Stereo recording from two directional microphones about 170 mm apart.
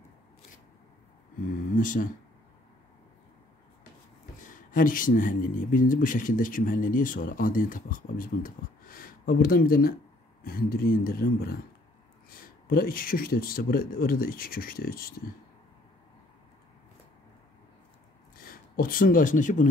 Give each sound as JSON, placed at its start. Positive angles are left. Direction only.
{"t": 1.8, "sound": "speech", "side_deg": 50}
{"t": 4.4, "sound": "speech", "side_deg": 50}
{"t": 18.3, "sound": "speech", "side_deg": 55}